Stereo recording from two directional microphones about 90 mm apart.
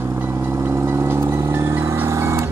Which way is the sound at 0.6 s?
25° right (ahead or behind).